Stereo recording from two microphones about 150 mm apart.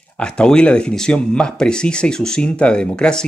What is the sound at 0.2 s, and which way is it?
Speech, 5° left (ahead or behind).